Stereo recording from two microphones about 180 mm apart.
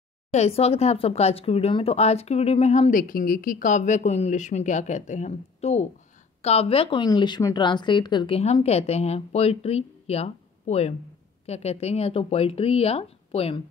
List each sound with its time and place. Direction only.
0.3 s speech: 35° left (ahead or behind)